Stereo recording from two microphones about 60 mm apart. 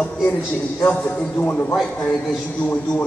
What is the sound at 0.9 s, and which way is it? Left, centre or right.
Speech, centre.